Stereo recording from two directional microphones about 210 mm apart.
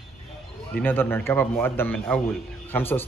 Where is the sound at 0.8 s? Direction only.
10° left (ahead or behind).